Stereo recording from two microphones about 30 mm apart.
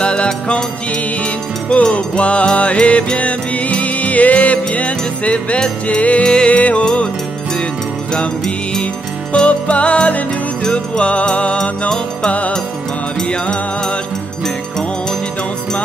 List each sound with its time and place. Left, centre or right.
0.0 s music: left
6.2 s music: left
6.5 s music: left
9.3 s music: left
13.2 s music: left
14.4 s music: centre